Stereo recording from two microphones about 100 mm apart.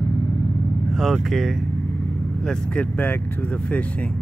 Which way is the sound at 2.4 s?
15° left (ahead or behind).